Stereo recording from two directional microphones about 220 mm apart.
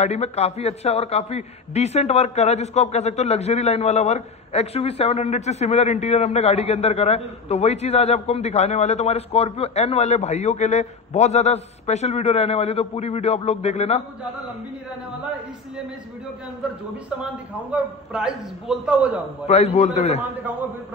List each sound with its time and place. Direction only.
0.0 s a man's voice: 30° left (ahead or behind)
17.2 s a man's voice: 5° right (ahead or behind)
19.4 s a man's voice: 30° left (ahead or behind)